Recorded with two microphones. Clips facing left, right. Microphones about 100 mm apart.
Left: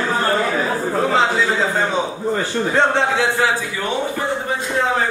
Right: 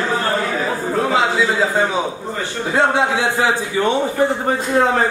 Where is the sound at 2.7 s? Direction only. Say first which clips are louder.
Right 2 dB; 10° right (ahead or behind).